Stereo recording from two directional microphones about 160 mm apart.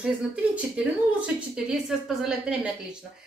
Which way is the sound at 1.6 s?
5° right (ahead or behind).